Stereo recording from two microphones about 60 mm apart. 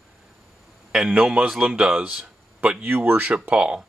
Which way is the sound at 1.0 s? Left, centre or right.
Centre.